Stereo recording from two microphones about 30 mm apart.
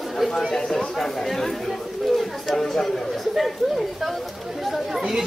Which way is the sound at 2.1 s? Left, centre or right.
Centre.